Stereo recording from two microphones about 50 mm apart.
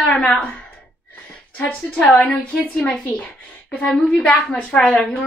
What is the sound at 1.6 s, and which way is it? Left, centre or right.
A woman's voice, left.